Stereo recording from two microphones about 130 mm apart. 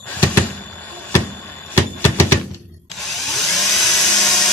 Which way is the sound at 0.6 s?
15° left (ahead or behind).